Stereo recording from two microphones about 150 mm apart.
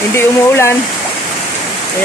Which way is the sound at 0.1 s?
15° left (ahead or behind).